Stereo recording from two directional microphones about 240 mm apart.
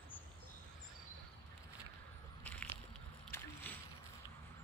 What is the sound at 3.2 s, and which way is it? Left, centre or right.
Boat, centre.